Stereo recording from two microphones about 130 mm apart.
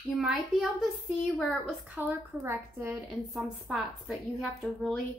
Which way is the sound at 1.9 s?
15° right (ahead or behind).